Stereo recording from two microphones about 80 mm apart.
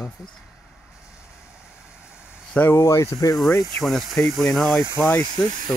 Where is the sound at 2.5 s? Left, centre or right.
Left.